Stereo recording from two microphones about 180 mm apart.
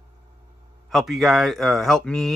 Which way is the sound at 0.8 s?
Centre (ahead or behind).